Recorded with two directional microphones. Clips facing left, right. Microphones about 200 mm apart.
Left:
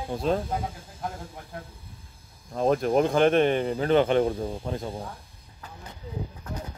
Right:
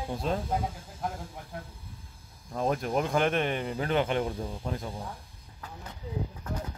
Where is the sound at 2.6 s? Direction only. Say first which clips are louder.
Left 7 dB; 30° left (ahead or behind).